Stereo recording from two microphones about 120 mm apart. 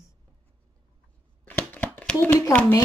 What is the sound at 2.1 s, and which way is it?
Speech, 20° left (ahead or behind).